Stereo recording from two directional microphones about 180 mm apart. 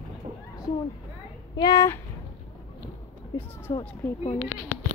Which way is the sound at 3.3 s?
20° left (ahead or behind).